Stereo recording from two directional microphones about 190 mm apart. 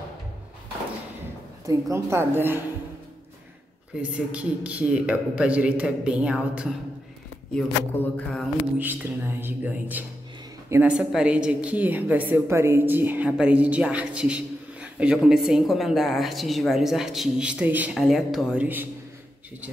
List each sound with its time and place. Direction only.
1.7 s a man's voice: 15° right (ahead or behind)
4.0 s a man's voice: 5° right (ahead or behind)
8.7 s a man's voice: 10° right (ahead or behind)